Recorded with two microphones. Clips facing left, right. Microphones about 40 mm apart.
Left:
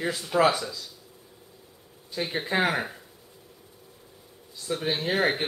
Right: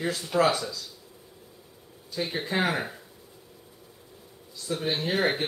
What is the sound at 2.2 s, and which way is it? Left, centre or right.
Speech, centre.